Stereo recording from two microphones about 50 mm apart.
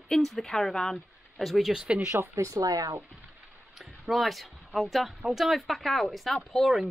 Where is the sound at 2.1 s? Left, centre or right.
Right.